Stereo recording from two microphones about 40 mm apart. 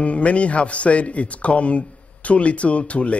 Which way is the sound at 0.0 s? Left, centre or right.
Left.